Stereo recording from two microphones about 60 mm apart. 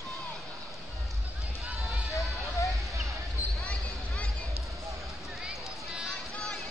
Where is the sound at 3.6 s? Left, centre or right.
Centre.